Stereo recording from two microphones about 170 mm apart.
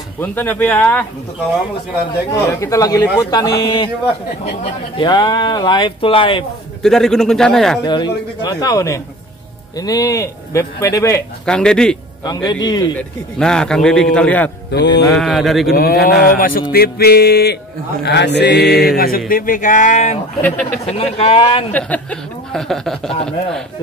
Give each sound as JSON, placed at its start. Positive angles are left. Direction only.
{"t": 0.2, "sound": "speech", "side_deg": 10}
{"t": 2.3, "sound": "a man's voice", "side_deg": 20}
{"t": 4.9, "sound": "a man's voice", "side_deg": 25}
{"t": 6.8, "sound": "speech", "side_deg": 5}
{"t": 7.8, "sound": "a man's voice", "side_deg": 25}
{"t": 11.4, "sound": "speech", "side_deg": 5}
{"t": 12.3, "sound": "a man's voice", "side_deg": 25}
{"t": 13.4, "sound": "speech", "side_deg": 5}
{"t": 15.7, "sound": "speech", "side_deg": 65}
{"t": 16.7, "sound": "music", "side_deg": 65}
{"t": 18.0, "sound": "mantra", "side_deg": 90}
{"t": 18.9, "sound": "speech", "side_deg": 60}
{"t": 21.7, "sound": "speech", "side_deg": 10}